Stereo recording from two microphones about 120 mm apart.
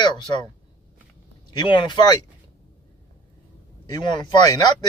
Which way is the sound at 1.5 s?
40° left (ahead or behind).